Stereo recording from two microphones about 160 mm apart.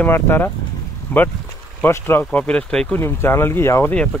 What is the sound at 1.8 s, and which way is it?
Speech, 15° left (ahead or behind).